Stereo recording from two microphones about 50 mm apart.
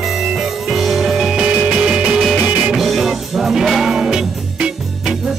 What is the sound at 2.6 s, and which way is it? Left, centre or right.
Music, centre.